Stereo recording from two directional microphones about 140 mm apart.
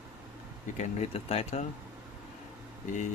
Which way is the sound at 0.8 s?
50° left (ahead or behind).